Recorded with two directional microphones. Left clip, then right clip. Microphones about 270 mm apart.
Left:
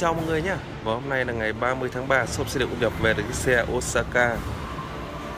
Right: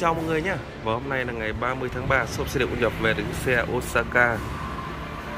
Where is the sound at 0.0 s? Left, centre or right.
Centre.